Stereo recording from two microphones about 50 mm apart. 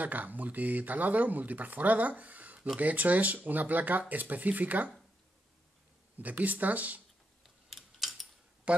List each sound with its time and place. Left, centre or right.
0.0 s speech: right
6.1 s speech: right
7.4 s a sound: centre
8.7 s speech: right